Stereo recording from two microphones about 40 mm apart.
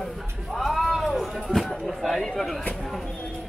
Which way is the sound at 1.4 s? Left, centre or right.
Centre.